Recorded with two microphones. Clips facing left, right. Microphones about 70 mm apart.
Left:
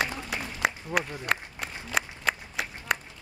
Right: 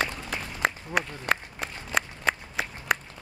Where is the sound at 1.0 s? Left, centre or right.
Centre.